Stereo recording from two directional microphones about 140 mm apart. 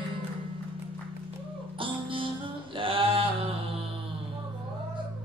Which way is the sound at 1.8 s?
40° right (ahead or behind).